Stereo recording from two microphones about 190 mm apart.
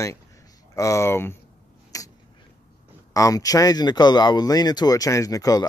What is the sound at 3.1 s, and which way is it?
Speech, 20° left (ahead or behind).